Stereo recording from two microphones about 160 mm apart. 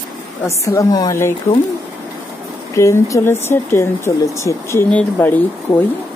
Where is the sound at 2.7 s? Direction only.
20° left (ahead or behind).